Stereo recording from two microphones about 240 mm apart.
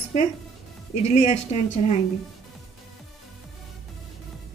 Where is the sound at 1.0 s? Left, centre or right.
Left.